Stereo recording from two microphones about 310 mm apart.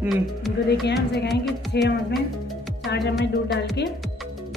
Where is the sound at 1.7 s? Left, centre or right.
Left.